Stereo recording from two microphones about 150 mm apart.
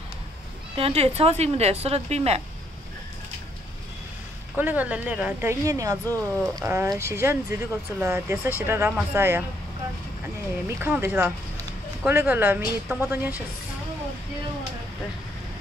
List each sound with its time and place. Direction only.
0.7 s a woman's voice: 40° right (ahead or behind)
4.6 s speech: 10° right (ahead or behind)
10.8 s speech: 15° right (ahead or behind)